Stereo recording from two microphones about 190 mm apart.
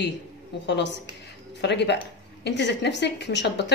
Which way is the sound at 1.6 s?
65° left (ahead or behind).